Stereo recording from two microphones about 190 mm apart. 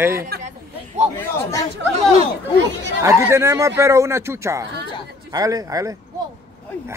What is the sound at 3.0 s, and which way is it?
Speech, 15° right (ahead or behind).